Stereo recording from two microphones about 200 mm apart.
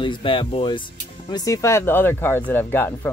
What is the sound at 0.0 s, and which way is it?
Speech, 25° left (ahead or behind).